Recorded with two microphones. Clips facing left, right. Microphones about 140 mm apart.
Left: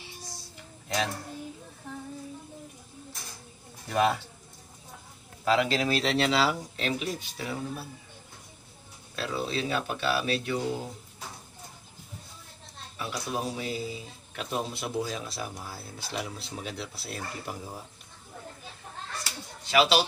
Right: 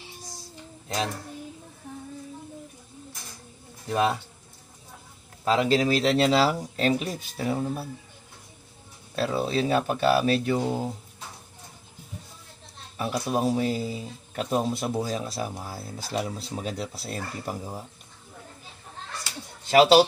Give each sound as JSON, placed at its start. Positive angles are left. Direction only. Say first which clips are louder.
{"t": 3.9, "sound": "speech", "louder": "right 1 dB", "side_deg": -30}
{"t": 5.4, "sound": "speech", "louder": "right 3 dB", "side_deg": -35}
{"t": 9.1, "sound": "speech", "louder": "right 6 dB", "side_deg": -40}
{"t": 12.9, "sound": "speech", "louder": "right 6 dB", "side_deg": -45}
{"t": 19.7, "sound": "speech", "louder": "right 7 dB", "side_deg": -45}